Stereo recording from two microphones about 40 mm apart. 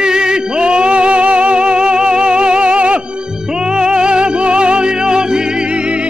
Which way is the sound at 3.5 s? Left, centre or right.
Right.